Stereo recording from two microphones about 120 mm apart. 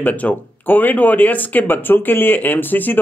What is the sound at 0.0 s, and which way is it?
Speech, 15° left (ahead or behind).